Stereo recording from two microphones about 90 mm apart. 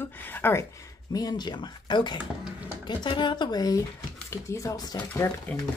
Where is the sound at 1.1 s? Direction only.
45° left (ahead or behind).